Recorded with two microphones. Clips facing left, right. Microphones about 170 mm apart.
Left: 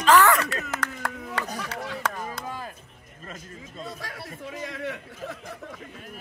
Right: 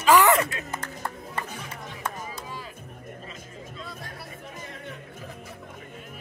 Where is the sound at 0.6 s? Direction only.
85° left.